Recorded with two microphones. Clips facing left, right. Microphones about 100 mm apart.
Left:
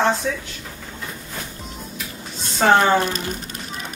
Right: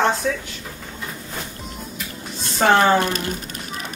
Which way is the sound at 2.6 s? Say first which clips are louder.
Even; 5° right (ahead or behind).